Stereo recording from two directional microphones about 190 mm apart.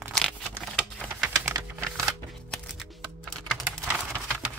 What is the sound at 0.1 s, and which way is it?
Tearing, 5° left (ahead or behind).